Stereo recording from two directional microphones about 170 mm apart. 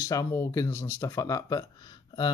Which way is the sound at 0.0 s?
20° left (ahead or behind).